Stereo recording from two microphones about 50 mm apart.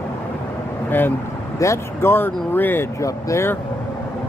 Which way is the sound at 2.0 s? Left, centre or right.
Left.